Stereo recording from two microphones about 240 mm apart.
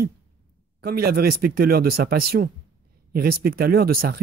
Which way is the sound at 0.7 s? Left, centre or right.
Right.